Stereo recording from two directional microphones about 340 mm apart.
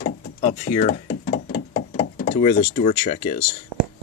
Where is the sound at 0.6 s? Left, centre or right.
Centre.